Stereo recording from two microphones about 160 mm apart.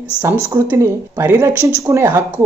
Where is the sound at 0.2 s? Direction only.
15° right (ahead or behind).